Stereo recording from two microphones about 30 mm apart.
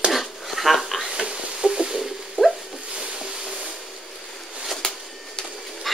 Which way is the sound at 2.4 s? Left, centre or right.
Right.